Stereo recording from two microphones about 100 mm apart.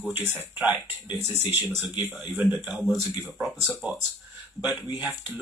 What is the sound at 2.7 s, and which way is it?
Speech, centre (ahead or behind).